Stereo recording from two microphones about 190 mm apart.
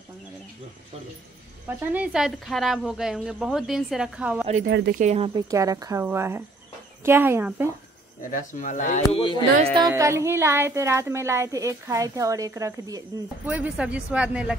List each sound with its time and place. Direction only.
1.9 s speech: 5° right (ahead or behind)
4.6 s speech: 75° right (ahead or behind)
4.9 s speech: 35° right (ahead or behind)
5.3 s a woman's voice: 20° right (ahead or behind)
8.2 s speech: 45° left (ahead or behind)
9.1 s speech: 25° left (ahead or behind)
9.8 s a woman's voice: 15° right (ahead or behind)
13.5 s speech: 5° right (ahead or behind)